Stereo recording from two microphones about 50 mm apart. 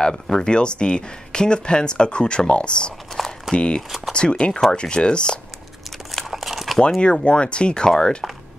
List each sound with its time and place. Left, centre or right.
0.0 s speech: centre
5.9 s crumpling: centre
7.0 s speech: centre